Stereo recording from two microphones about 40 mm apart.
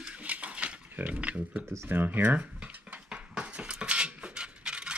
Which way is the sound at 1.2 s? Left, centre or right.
Right.